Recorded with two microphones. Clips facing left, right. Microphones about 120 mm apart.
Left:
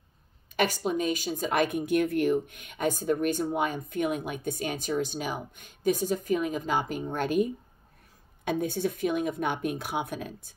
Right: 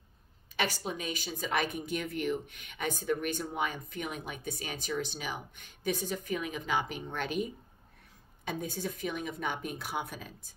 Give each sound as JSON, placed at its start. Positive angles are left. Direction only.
{"t": 0.6, "sound": "speech", "side_deg": 45}
{"t": 8.5, "sound": "a woman's voice", "side_deg": 60}